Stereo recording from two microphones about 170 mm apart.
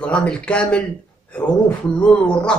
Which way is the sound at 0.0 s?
5° left (ahead or behind).